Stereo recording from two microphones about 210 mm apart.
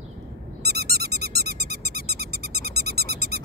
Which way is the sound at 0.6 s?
50° right (ahead or behind).